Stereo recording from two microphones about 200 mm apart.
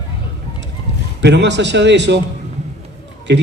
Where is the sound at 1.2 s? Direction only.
60° right (ahead or behind).